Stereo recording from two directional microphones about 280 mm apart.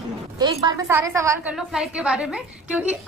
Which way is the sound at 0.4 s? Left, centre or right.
Centre.